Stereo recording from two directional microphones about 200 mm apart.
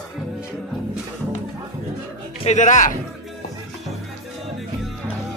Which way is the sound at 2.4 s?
35° left (ahead or behind).